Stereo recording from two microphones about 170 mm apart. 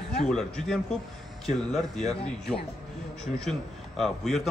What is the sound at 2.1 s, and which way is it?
Speech, 5° left (ahead or behind).